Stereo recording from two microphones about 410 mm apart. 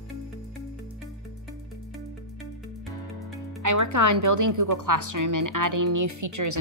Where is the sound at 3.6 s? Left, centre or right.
Right.